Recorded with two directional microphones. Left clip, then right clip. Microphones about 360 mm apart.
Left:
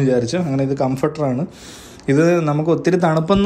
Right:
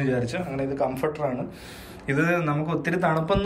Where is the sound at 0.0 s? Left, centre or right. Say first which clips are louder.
Left 9 dB; centre.